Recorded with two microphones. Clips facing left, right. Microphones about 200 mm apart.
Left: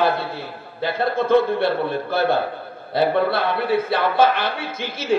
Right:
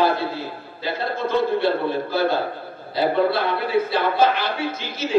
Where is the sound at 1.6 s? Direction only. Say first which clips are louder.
Even; 55° left (ahead or behind).